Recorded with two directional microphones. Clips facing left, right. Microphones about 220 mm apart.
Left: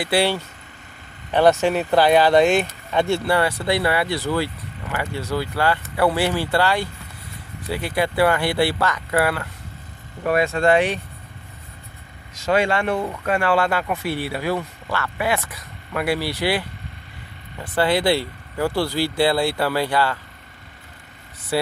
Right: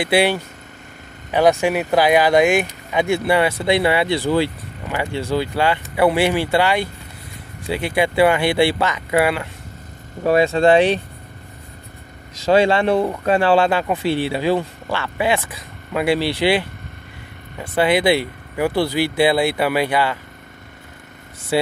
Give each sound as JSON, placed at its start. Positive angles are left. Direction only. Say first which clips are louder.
{"t": 0.0, "sound": "speech", "louder": "right 3 dB", "side_deg": -20}
{"t": 12.4, "sound": "speech", "louder": "right 5 dB", "side_deg": -30}